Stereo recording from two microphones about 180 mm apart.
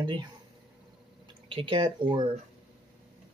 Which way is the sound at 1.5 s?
30° right (ahead or behind).